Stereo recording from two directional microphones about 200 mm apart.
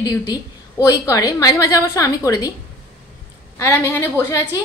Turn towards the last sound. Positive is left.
turn(degrees=15)  # may be behind; listen again after turning